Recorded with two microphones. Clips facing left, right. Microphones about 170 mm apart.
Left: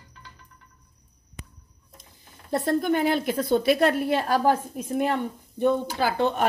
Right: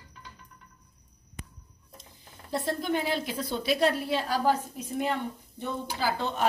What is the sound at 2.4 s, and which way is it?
A woman's voice, 50° left (ahead or behind).